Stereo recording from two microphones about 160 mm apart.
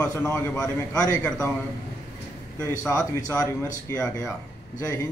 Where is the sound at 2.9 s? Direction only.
20° left (ahead or behind).